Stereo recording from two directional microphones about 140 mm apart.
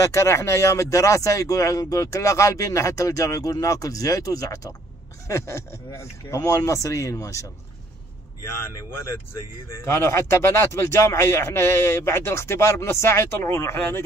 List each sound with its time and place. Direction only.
0.0 s speech: 20° left (ahead or behind)
9.8 s speech: 20° left (ahead or behind)